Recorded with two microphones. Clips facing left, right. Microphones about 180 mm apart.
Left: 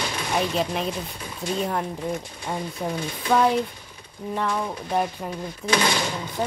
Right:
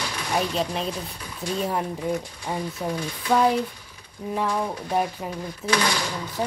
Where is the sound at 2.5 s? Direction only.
5° right (ahead or behind).